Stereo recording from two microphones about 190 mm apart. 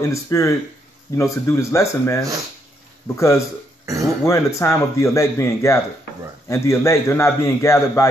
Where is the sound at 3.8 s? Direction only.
15° right (ahead or behind).